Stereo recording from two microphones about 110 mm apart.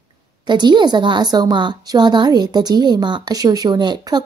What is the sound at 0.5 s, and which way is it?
A woman's voice, 45° right (ahead or behind).